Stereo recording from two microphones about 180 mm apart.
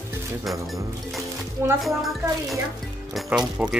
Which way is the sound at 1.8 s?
Centre (ahead or behind).